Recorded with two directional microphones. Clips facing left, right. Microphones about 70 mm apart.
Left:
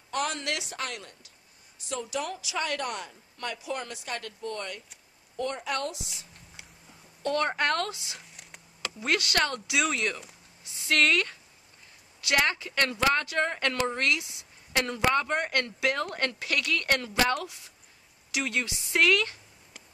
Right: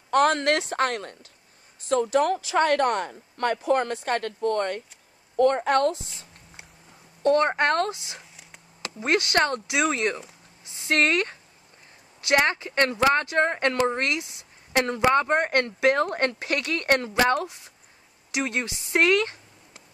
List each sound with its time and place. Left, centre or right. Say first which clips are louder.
0.1 s a woman's voice: right 10 dB; right